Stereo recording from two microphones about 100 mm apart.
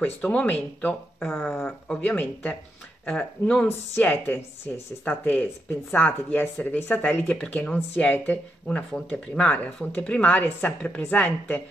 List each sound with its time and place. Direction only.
0.0 s speech: 15° left (ahead or behind)
2.0 s speech: 15° left (ahead or behind)